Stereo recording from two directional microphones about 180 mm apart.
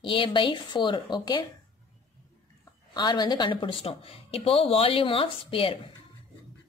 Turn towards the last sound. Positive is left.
turn(degrees=30)  # may be behind; listen again after turning